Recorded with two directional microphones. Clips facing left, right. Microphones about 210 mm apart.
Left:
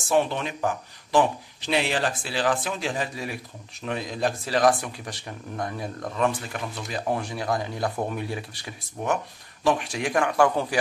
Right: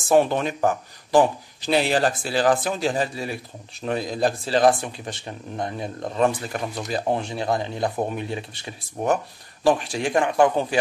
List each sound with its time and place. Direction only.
0.1 s speech: 45° right (ahead or behind)
7.1 s speech: 25° right (ahead or behind)
9.0 s speech: 35° right (ahead or behind)